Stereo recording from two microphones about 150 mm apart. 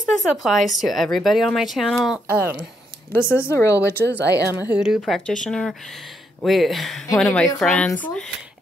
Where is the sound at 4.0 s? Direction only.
90° right.